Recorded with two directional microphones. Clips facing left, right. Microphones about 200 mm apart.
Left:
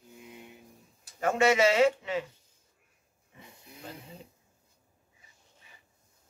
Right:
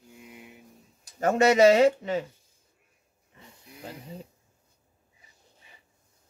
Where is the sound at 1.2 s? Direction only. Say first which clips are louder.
Right 5 dB; 40° right (ahead or behind).